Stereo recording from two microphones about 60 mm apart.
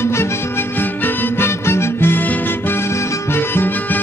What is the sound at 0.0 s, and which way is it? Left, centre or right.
Music, left.